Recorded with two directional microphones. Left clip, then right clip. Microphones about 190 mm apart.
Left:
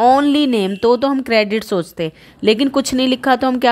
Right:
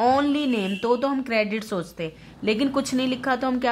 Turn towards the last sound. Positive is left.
turn(degrees=40)  # may be behind; listen again after turning